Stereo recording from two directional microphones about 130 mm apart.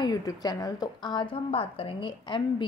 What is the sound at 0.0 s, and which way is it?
A woman's voice, 30° left (ahead or behind).